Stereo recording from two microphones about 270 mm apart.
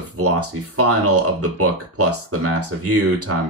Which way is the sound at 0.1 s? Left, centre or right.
Right.